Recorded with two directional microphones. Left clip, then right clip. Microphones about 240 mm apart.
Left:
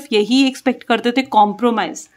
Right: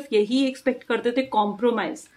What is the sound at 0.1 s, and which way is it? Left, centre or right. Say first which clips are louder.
Speech: left 6 dB; left.